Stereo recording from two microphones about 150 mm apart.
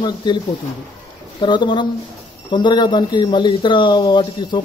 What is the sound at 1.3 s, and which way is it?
Speech, 30° left (ahead or behind).